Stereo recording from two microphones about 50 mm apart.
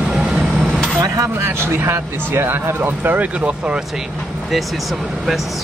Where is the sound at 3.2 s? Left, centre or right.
Right.